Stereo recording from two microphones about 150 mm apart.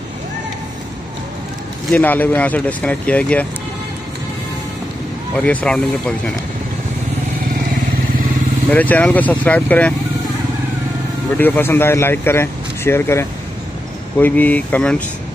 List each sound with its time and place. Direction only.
1.9 s speech: 10° left (ahead or behind)
5.3 s speech: 10° left (ahead or behind)
8.6 s speech: 10° left (ahead or behind)
11.3 s speech: 10° left (ahead or behind)